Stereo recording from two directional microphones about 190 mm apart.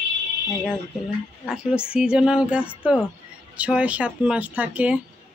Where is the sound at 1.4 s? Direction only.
5° right (ahead or behind).